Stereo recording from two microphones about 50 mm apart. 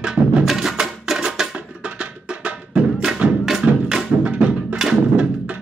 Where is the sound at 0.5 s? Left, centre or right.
Centre.